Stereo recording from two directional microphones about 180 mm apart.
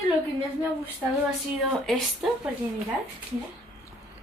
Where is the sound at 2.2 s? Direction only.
5° right (ahead or behind).